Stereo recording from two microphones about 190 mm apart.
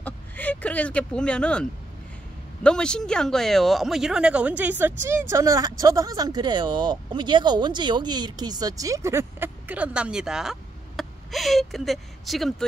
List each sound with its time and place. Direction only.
0.0 s speech: 10° left (ahead or behind)